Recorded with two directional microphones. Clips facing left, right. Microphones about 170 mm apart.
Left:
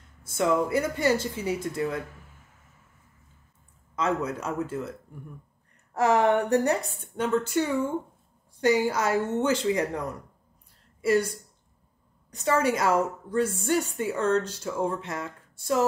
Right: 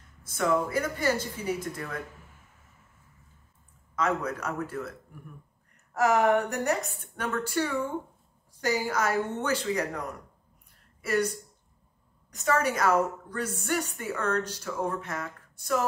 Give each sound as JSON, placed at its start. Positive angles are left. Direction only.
{"t": 0.4, "sound": "a woman's voice", "side_deg": 25}
{"t": 3.9, "sound": "a woman's voice", "side_deg": 25}
{"t": 5.9, "sound": "a woman's voice", "side_deg": 30}
{"t": 11.0, "sound": "a woman's voice", "side_deg": 30}